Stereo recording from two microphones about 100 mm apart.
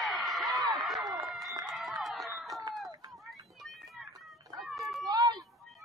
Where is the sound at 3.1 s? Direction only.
Centre (ahead or behind).